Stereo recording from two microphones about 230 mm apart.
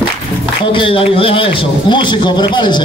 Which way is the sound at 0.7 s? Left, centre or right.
Left.